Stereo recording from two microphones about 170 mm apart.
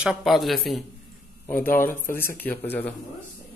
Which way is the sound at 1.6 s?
60° left (ahead or behind).